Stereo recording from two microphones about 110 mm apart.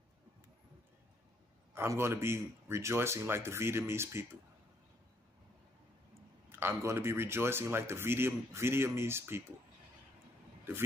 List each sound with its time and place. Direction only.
1.7 s speech: 20° right (ahead or behind)
6.5 s speech: 25° right (ahead or behind)